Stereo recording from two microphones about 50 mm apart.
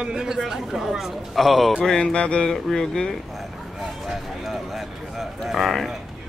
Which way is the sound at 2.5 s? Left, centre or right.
Centre.